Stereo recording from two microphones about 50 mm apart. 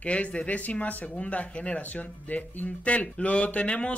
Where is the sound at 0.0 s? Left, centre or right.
Left.